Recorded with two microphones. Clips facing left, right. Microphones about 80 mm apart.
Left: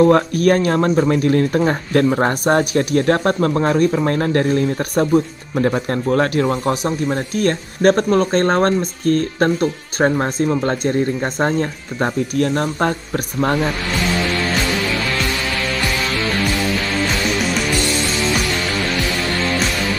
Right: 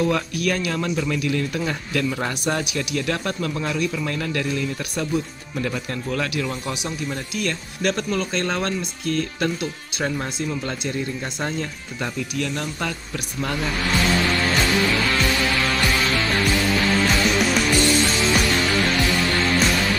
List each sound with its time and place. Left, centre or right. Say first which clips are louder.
0.0 s speech: left 9 dB; left